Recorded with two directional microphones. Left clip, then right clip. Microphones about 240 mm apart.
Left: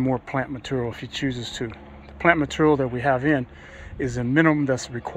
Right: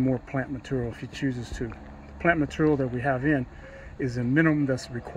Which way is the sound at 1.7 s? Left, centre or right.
Left.